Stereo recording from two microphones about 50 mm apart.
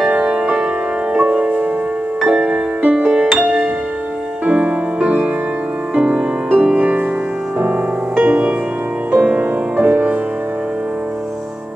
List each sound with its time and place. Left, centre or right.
0.2 s music: centre
1.1 s music: right
2.2 s music: centre
2.8 s music: right
4.5 s music: right
8.2 s music: right